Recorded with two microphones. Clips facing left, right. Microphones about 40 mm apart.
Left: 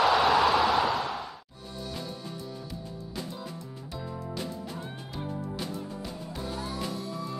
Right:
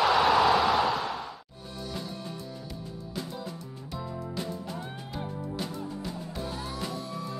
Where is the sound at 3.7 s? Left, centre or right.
Centre.